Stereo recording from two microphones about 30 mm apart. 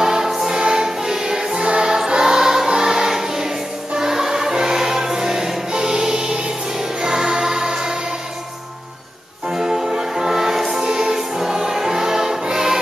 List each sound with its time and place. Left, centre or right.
0.0 s choir: centre
3.9 s music: centre
9.6 s music: centre